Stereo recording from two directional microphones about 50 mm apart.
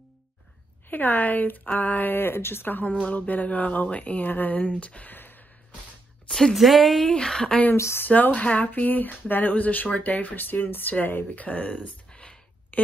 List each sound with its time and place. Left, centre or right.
0.8 s speech: left
2.1 s speech: left
6.2 s a sound: centre
6.5 s speech: centre
7.1 s speech: centre
7.7 s speech: left
8.1 s speech: left
11.4 s a sound: left
12.7 s a sound: left